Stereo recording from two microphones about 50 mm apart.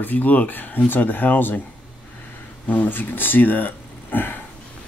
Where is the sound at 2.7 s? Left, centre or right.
Left.